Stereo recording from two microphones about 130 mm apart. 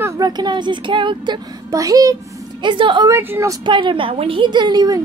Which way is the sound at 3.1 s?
20° right (ahead or behind).